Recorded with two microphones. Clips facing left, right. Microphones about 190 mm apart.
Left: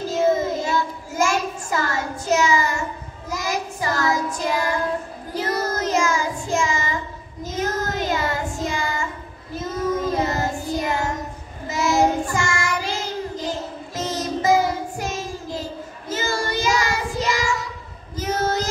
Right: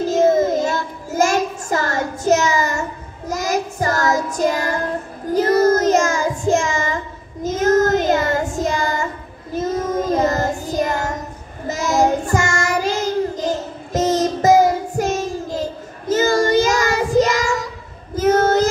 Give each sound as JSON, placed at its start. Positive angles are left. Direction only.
{"t": 0.1, "sound": "child singing", "side_deg": -45}
{"t": 10.1, "sound": "child singing", "side_deg": -45}